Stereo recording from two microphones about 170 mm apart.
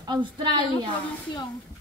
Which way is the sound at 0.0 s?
25° right (ahead or behind).